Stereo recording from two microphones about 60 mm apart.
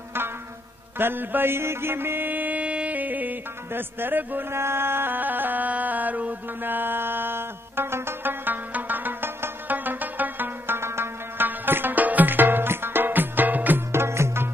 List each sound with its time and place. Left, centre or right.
0.9 s mantra: right
4.5 s music: right
13.9 s music: right